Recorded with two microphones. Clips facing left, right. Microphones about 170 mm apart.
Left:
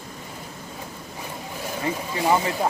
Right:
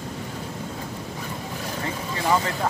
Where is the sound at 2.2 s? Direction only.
15° left (ahead or behind).